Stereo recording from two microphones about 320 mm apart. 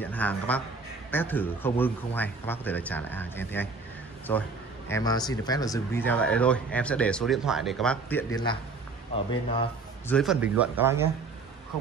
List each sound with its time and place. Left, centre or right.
0.0 s speech: centre
9.1 s speech: centre
10.0 s speech: centre